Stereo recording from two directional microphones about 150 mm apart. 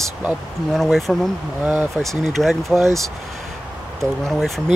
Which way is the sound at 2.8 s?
20° right (ahead or behind).